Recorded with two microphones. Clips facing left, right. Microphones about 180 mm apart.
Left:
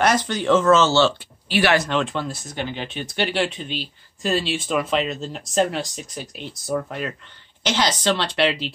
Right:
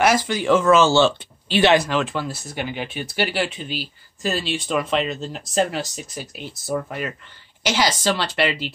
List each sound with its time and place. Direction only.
0.0 s speech: 10° right (ahead or behind)
1.8 s speech: 5° right (ahead or behind)